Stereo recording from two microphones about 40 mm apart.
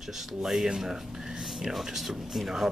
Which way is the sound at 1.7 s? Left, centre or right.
Centre.